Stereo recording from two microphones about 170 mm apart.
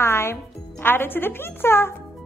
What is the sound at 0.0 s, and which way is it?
Speech, 15° left (ahead or behind).